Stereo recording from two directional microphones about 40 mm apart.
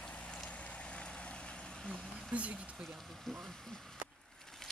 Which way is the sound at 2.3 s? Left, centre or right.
Right.